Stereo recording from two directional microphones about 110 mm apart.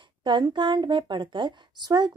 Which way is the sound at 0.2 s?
45° right (ahead or behind).